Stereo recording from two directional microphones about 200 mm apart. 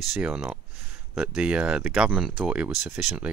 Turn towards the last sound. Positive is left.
turn(degrees=-5)  # may be behind; listen again after turning